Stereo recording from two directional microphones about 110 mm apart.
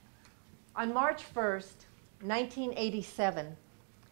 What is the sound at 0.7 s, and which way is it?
A woman's voice, 40° left (ahead or behind).